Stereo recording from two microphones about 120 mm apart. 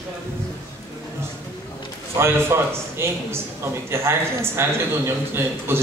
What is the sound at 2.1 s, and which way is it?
A man's voice, 20° right (ahead or behind).